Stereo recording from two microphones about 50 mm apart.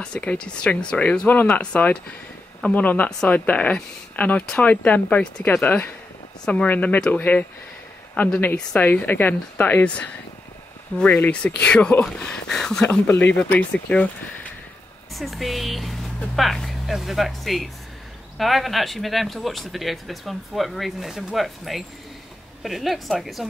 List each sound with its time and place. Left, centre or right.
0.0 s speech: left
6.4 s speech: left
6.7 s speech: left
11.0 s speech: left
12.4 s speech: centre
13.2 s speech: left
15.1 s speech: centre